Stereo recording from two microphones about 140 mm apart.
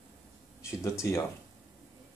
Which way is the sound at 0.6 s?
20° left (ahead or behind).